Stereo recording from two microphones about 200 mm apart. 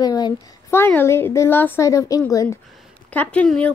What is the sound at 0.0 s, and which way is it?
A woman's voice, 20° left (ahead or behind).